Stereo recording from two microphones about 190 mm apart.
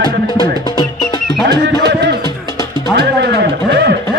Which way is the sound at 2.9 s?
60° right (ahead or behind).